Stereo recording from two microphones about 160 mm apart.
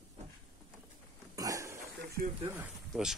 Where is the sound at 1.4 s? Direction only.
20° right (ahead or behind).